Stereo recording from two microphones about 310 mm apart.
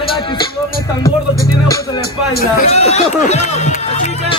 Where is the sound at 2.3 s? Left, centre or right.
Left.